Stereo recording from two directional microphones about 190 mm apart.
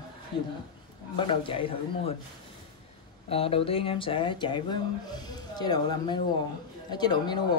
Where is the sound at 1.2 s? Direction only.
25° left (ahead or behind).